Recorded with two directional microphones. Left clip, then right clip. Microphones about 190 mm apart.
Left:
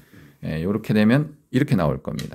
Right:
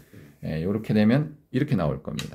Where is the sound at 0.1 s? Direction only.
30° left (ahead or behind).